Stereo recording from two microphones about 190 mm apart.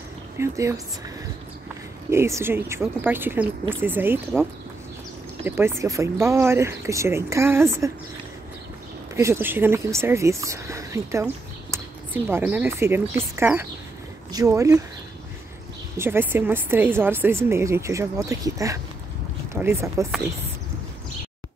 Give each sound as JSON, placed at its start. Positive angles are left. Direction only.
{"t": 0.4, "sound": "a woman's voice", "side_deg": -15}
{"t": 2.0, "sound": "a woman's voice", "side_deg": -15}
{"t": 5.4, "sound": "a woman's voice", "side_deg": -15}
{"t": 9.1, "sound": "a woman's voice", "side_deg": -15}
{"t": 12.3, "sound": "a woman's voice", "side_deg": -10}
{"t": 16.0, "sound": "a woman's voice", "side_deg": -10}